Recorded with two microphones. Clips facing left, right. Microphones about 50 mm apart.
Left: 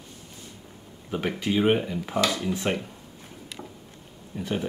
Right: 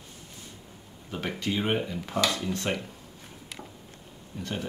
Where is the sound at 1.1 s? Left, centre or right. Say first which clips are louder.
Left 5 dB; centre.